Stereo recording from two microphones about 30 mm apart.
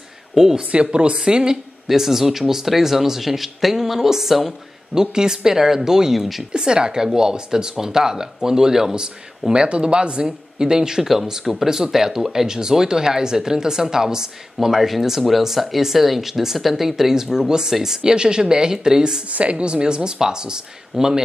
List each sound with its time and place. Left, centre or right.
0.7 s speech: right
1.1 s speech: right
1.9 s speech: centre
4.9 s speech: right
6.1 s speech: centre
6.5 s speech: right
9.5 s speech: right
14.8 s speech: centre
18.1 s speech: right
19.2 s a woman's voice: right
19.5 s speech: right; by 21.2 s centre